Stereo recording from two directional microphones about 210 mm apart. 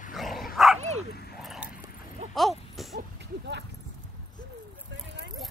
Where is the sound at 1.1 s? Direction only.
50° left (ahead or behind).